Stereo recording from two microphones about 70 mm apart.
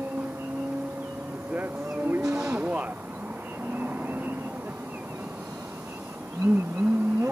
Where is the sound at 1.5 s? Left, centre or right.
Right.